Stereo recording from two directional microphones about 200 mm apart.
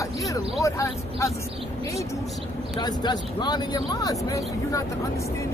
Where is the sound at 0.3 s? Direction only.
15° left (ahead or behind).